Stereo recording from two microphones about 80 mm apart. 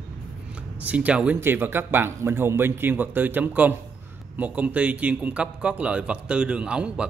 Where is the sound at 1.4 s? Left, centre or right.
Right.